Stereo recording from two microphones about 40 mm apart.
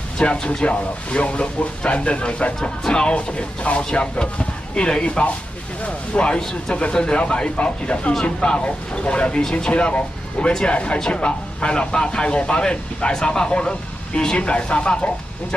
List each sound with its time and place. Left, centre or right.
0.2 s speech: left
9.4 s speech: centre
9.7 s speech: left